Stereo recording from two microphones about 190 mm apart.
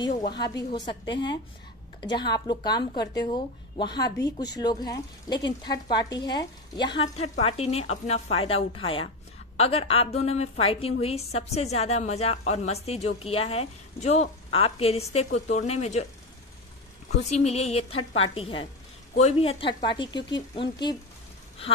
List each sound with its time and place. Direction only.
0.4 s a woman's voice: 20° left (ahead or behind)
2.0 s a woman's voice: 25° left (ahead or behind)
4.2 s speech: 60° left (ahead or behind)
4.6 s a woman's voice: 20° left (ahead or behind)
17.2 s a woman's voice: 35° left (ahead or behind)